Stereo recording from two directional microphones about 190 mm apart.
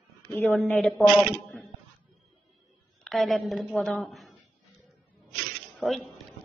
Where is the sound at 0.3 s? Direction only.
15° left (ahead or behind).